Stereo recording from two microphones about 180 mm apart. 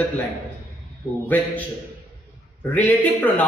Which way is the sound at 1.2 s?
10° left (ahead or behind).